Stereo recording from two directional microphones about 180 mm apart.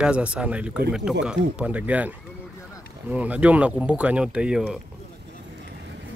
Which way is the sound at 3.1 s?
10° right (ahead or behind).